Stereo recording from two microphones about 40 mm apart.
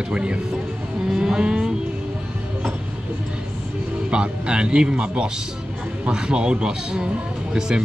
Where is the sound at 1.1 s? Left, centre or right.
Centre.